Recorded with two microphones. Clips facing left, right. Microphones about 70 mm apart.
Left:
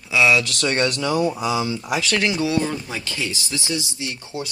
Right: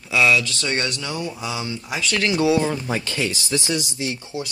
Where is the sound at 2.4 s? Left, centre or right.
Centre.